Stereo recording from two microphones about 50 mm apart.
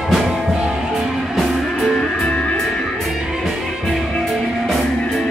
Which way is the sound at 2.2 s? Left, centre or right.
Left.